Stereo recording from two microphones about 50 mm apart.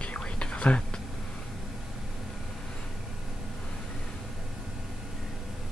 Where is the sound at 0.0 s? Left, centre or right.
Left.